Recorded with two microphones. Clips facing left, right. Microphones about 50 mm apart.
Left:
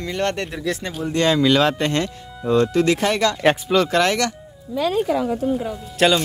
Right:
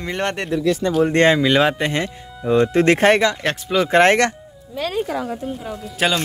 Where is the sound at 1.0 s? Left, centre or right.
Right.